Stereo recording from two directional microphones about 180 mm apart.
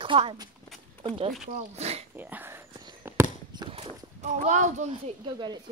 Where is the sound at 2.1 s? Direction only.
10° right (ahead or behind).